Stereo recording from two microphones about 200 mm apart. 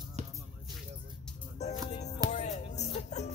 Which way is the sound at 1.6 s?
35° left (ahead or behind).